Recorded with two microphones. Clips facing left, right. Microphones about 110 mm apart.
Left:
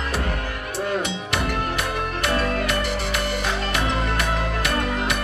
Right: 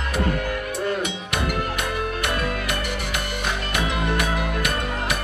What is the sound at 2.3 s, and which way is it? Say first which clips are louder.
Music: left 3 dB; 40° left (ahead or behind).